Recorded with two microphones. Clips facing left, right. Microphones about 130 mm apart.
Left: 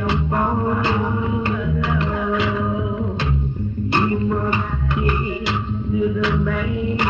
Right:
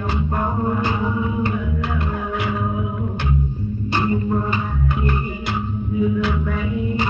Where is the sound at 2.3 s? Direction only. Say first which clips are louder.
Left 4 dB; 90° left.